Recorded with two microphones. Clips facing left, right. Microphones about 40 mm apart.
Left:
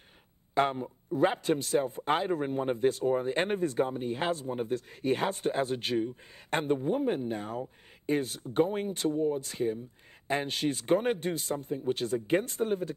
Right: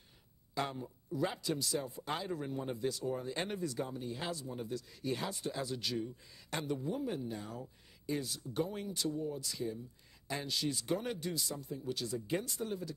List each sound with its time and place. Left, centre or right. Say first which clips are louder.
0.6 s a man's voice: left 10 dB; left